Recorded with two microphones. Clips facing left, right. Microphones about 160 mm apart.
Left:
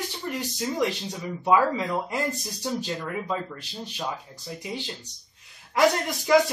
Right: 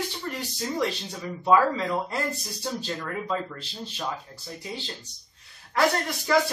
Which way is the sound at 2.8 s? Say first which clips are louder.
Left 1 dB; 15° left (ahead or behind).